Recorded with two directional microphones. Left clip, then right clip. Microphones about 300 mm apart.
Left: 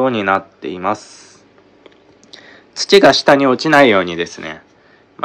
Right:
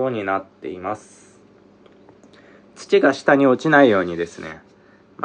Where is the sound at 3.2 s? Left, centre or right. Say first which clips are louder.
Left 4 dB; centre.